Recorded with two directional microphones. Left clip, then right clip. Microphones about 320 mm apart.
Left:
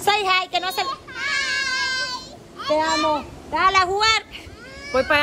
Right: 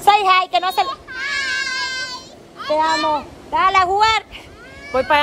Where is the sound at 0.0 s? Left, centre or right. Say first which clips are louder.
Right 6 dB; centre.